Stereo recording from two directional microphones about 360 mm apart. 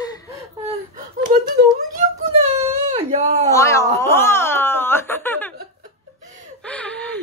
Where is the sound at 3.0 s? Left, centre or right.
Centre.